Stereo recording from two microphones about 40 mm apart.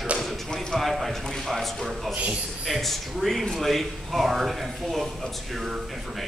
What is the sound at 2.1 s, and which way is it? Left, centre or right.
Speech, right.